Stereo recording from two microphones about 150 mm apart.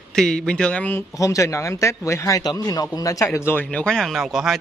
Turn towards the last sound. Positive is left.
turn(degrees=0)  # may be behind; listen again after turning